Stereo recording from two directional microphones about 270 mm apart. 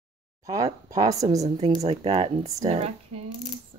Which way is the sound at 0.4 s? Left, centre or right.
Centre.